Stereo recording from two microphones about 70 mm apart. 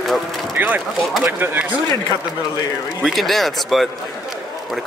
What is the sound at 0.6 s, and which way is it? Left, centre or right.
Speech, right.